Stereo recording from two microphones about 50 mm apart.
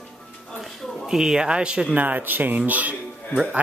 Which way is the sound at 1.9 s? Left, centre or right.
Right.